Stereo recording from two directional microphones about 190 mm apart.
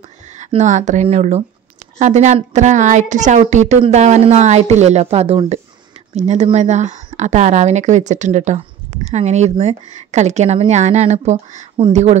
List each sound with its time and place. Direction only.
0.4 s speech: 40° right (ahead or behind)